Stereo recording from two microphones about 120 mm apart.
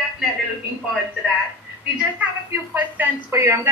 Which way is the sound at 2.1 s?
15° right (ahead or behind).